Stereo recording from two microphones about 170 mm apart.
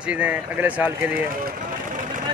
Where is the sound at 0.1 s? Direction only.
10° right (ahead or behind).